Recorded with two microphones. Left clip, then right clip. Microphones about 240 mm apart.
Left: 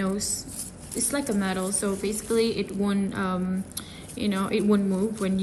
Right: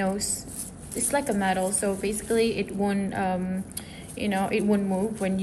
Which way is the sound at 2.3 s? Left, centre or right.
Right.